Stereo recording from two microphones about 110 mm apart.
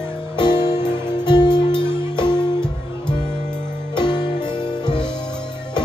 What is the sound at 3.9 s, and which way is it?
Music, 45° left (ahead or behind).